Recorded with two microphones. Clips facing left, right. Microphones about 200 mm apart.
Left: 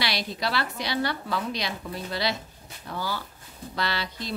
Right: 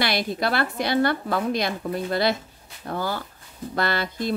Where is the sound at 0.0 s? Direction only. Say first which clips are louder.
Right 5 dB; 50° right (ahead or behind).